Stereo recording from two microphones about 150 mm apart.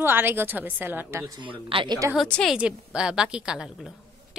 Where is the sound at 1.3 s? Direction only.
35° right (ahead or behind).